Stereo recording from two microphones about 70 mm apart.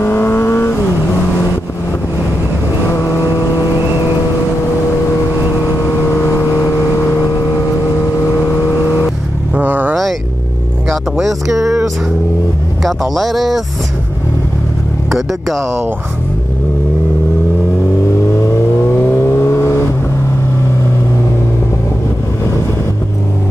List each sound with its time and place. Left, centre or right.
0.0 s vehicle: left
2.9 s vehicle: left
5.7 s vehicle: left
9.6 s vehicle: right
10.9 s a sound: centre
12.8 s music: centre
15.0 s vehicle: centre
18.4 s vehicle: left